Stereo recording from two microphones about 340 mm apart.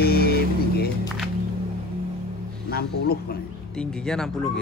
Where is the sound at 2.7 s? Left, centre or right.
Left.